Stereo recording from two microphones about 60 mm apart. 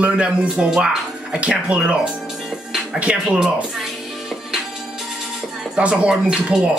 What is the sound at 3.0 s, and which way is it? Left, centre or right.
Speech, centre.